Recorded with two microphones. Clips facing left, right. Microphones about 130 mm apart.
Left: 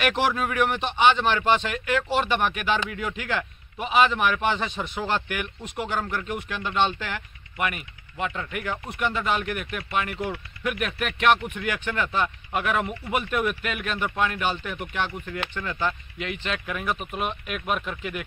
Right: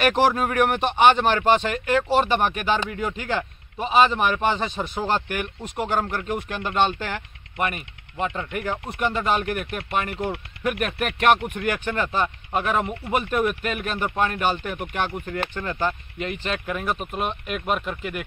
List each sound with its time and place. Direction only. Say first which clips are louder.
0.0 s speech: right 4 dB; 40° right (ahead or behind)
17.8 s speech: right 2 dB; 5° right (ahead or behind)